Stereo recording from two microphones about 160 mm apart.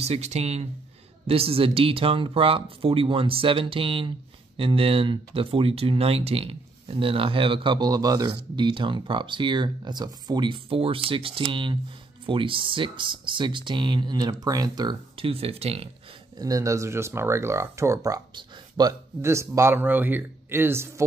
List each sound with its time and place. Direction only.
0.0 s speech: 40° right (ahead or behind)
16.3 s speech: 20° right (ahead or behind)